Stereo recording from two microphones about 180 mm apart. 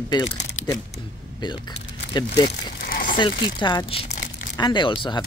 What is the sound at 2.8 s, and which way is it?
Crumpling, 50° left (ahead or behind).